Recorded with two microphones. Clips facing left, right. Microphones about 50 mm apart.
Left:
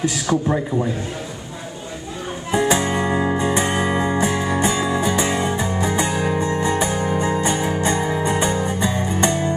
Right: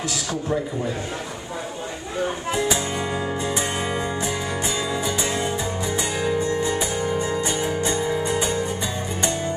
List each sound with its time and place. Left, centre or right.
0.0 s speech: left
2.5 s music: left